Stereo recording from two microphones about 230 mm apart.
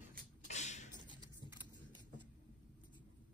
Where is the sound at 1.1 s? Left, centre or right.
Centre.